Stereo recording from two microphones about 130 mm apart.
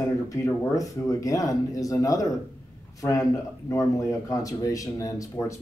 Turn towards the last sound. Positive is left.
turn(degrees=25)  # may be behind; listen again after turning